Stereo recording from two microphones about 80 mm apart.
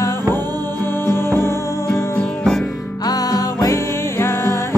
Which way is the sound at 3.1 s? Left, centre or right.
Left.